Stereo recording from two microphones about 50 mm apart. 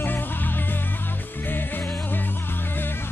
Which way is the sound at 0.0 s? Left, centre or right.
Left.